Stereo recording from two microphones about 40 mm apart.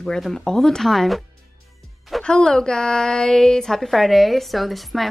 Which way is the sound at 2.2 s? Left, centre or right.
Left.